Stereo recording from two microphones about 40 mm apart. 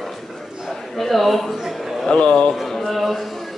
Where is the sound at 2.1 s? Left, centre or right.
Left.